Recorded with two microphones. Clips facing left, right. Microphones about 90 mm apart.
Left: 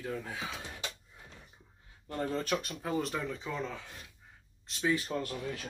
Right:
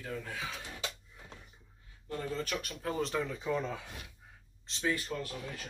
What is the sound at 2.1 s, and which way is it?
Speech, 40° left (ahead or behind).